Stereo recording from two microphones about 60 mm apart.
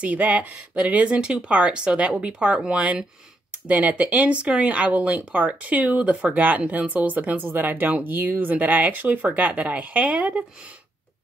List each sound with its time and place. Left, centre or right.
0.0 s speech: right
7.4 s speech: right; by 10.4 s centre